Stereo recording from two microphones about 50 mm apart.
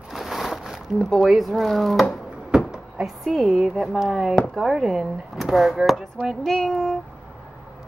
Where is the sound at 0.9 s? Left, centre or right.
Centre.